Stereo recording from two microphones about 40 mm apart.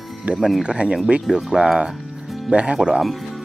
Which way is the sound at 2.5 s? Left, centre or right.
Right.